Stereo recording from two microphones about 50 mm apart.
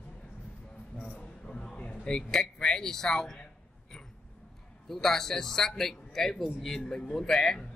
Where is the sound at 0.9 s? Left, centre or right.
Left.